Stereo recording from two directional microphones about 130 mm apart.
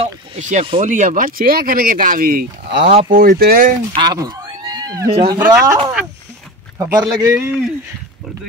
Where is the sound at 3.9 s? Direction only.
30° right (ahead or behind).